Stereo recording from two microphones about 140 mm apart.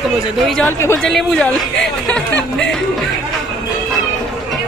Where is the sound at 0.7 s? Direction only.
20° left (ahead or behind).